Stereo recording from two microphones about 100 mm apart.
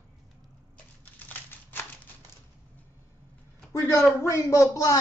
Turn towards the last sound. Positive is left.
turn(degrees=35)  # may be behind; listen again after turning